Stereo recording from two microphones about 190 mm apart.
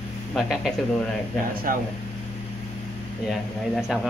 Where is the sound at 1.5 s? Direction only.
50° right (ahead or behind).